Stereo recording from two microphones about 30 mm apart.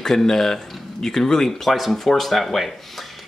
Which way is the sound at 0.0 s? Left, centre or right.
Centre.